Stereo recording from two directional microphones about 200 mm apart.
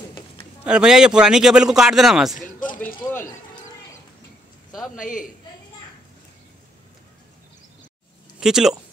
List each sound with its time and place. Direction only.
0.7 s a man's voice: 5° right (ahead or behind)
2.4 s a sound: 40° left (ahead or behind)
4.9 s a man's voice: 40° left (ahead or behind)
8.4 s speech: 5° right (ahead or behind)